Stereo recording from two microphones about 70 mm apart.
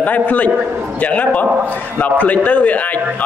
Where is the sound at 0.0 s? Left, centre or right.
Left.